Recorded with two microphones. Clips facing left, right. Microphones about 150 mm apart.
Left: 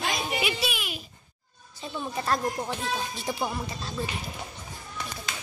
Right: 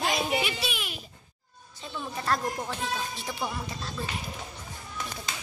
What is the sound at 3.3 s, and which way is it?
Speech, 30° left (ahead or behind).